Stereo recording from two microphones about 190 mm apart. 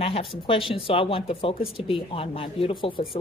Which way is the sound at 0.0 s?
30° left (ahead or behind).